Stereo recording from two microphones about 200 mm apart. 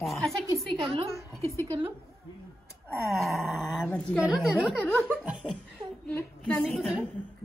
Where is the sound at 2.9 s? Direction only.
Centre (ahead or behind).